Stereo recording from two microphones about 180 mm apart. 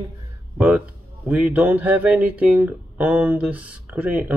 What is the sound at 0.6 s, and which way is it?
Speech, 5° right (ahead or behind).